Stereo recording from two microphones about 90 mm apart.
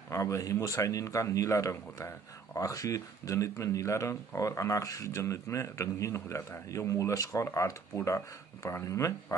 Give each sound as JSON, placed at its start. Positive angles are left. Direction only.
{"t": 0.1, "sound": "speech", "side_deg": 35}